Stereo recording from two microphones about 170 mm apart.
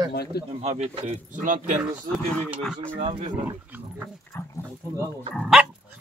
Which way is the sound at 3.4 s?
10° right (ahead or behind).